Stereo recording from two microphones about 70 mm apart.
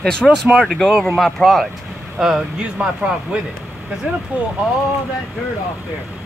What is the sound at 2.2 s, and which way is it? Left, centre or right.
Speech, centre.